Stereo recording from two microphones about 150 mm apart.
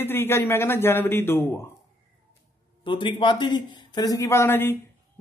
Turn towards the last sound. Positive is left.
turn(degrees=15)  # may be behind; listen again after turning